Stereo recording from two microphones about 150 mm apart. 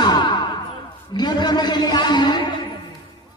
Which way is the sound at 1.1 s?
30° left (ahead or behind).